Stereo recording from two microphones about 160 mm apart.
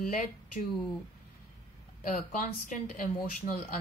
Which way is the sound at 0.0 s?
60° left (ahead or behind).